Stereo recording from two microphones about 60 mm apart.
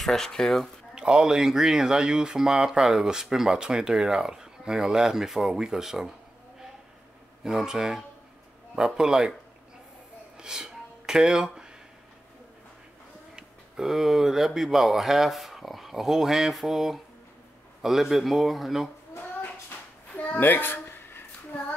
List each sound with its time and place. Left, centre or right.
0.0 s speech: centre
0.9 s speech: centre
7.4 s speech: centre
10.3 s a sound: centre
13.4 s speech: centre
20.2 s a sound: left